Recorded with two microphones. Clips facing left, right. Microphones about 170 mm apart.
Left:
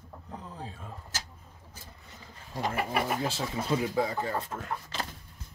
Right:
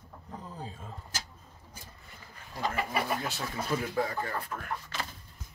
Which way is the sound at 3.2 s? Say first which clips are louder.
Left 4 dB; 25° left (ahead or behind).